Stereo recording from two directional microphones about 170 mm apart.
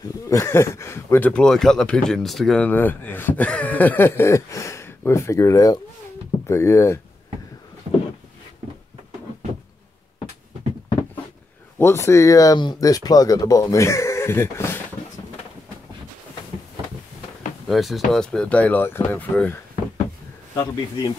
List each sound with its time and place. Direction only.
0.3 s speech: 15° left (ahead or behind)
11.8 s speech: 15° left (ahead or behind)
17.6 s speech: centre (ahead or behind)
20.5 s speech: 20° left (ahead or behind)